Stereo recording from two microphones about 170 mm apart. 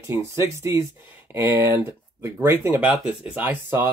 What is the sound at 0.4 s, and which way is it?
Speech, 15° right (ahead or behind).